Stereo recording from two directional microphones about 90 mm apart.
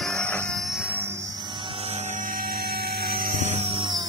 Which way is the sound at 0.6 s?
Centre (ahead or behind).